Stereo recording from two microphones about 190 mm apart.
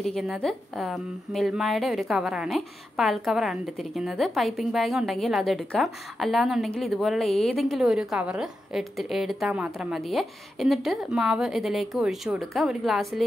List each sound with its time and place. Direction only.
0.0 s a woman's voice: centre (ahead or behind)